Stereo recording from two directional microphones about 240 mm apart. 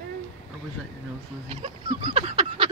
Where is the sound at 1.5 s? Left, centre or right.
Right.